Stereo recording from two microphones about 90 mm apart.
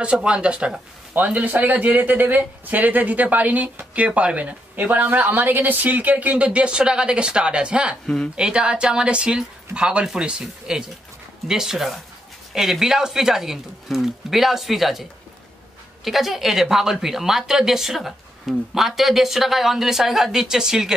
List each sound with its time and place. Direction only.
0.0 s a man's voice: 10° right (ahead or behind)